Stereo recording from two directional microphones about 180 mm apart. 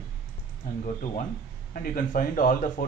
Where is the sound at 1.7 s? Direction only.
50° left (ahead or behind).